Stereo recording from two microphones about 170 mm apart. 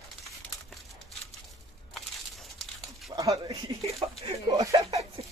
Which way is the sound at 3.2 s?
20° right (ahead or behind).